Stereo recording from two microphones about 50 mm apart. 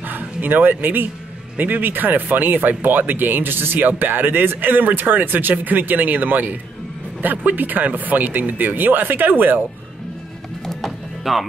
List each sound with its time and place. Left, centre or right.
0.0 s speech: right
10.6 s music: centre